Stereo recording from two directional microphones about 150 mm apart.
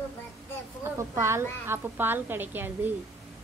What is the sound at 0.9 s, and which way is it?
Speech, 20° right (ahead or behind).